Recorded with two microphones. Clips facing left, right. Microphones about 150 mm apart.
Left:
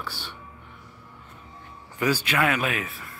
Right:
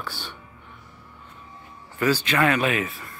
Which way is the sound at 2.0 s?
10° left (ahead or behind).